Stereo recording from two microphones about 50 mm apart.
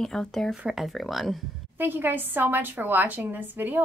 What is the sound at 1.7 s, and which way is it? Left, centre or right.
Speech, right.